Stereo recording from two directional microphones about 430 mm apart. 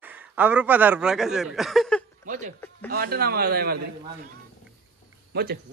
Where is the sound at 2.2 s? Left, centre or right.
Centre.